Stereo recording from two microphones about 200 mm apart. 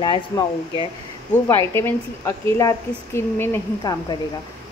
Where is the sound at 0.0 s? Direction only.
25° left (ahead or behind).